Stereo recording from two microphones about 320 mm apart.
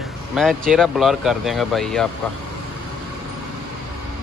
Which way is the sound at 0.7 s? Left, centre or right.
Centre.